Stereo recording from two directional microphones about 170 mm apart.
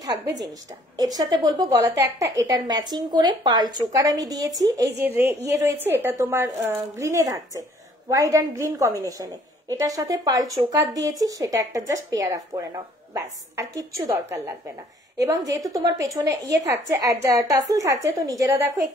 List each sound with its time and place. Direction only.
0.5 s a woman's voice: 20° right (ahead or behind)